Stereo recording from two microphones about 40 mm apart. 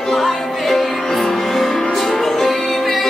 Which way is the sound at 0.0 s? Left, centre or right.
Centre.